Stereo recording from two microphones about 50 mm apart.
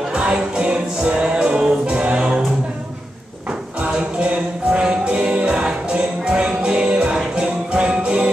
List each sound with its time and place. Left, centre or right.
0.1 s music: right
3.8 s music: right